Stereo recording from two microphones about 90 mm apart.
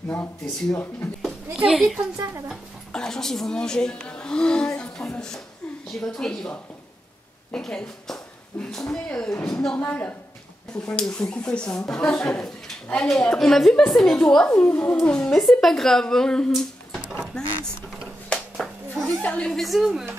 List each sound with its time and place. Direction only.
1.6 s a woman's voice: 5° right (ahead or behind)
9.8 s a woman's voice: 20° left (ahead or behind)
18.6 s a sound: 5° left (ahead or behind)
19.0 s a woman's voice: 15° left (ahead or behind); by 20.1 s 5° right (ahead or behind)